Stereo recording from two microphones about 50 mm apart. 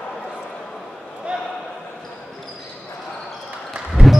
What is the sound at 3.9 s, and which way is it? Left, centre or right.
Basketball bounce, centre.